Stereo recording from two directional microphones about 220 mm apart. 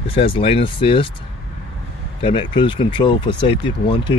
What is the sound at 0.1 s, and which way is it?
Speech, 25° left (ahead or behind).